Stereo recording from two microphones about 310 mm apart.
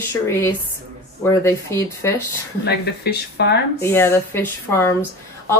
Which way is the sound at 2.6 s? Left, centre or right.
Left.